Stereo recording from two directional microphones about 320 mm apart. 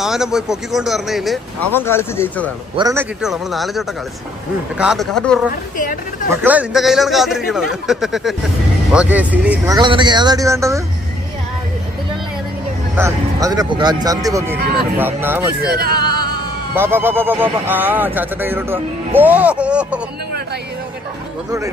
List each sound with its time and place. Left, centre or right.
0.0 s speech: centre
2.7 s a man's voice: centre
12.9 s a man's voice: centre
15.6 s speech: right
16.7 s speech: centre